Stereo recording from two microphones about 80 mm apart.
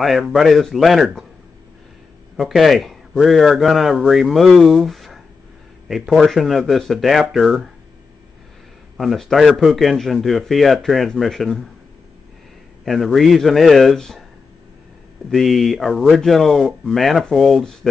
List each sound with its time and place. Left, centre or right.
0.0 s a man's voice: centre
2.3 s a man's voice: centre
8.9 s a man's voice: centre
12.8 s a man's voice: centre
15.3 s a man's voice: centre